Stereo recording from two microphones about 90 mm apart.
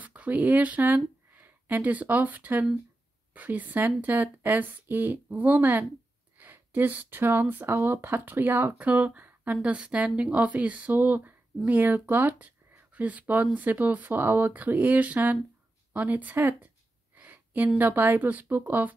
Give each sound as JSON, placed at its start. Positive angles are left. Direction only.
{"t": 0.0, "sound": "speech", "side_deg": -15}
{"t": 17.1, "sound": "a sound", "side_deg": -20}
{"t": 17.7, "sound": "speech", "side_deg": -20}